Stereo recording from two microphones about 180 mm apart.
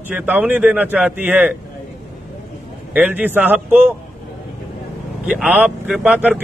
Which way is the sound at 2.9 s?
10° right (ahead or behind).